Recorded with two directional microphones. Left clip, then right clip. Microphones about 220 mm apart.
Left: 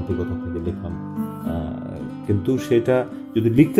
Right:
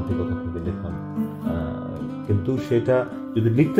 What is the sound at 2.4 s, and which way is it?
Speech, 45° left (ahead or behind).